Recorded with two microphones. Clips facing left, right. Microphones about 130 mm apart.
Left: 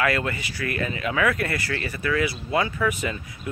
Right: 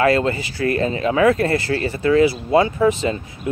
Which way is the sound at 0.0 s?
30° right (ahead or behind).